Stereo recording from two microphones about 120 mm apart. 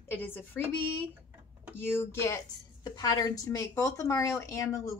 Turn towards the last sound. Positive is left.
turn(degrees=25)  # may be behind; listen again after turning